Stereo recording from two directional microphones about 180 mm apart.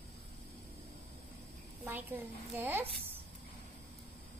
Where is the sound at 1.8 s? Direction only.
10° right (ahead or behind).